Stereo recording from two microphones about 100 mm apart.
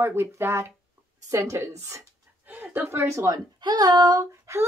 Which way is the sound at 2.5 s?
15° right (ahead or behind).